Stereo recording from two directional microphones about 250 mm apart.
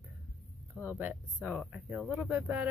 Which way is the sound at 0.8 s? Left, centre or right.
Centre.